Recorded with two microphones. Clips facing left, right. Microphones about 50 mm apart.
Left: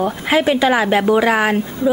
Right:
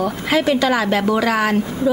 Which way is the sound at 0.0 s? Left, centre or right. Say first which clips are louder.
Left 2 dB; left.